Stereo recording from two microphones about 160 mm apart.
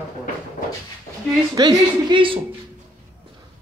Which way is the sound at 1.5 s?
25° right (ahead or behind).